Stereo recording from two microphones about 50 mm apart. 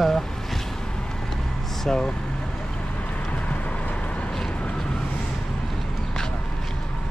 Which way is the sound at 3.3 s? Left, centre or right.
Left.